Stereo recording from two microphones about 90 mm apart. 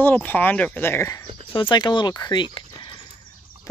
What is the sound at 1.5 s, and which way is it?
Speech, 65° left (ahead or behind).